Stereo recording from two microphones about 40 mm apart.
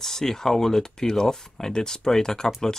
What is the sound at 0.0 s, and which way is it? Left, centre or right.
Speech, centre.